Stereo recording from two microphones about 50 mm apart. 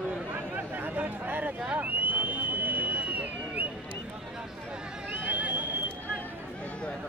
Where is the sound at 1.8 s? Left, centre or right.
Right.